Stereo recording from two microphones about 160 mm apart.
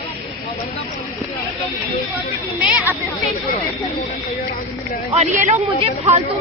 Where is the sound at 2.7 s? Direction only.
10° right (ahead or behind).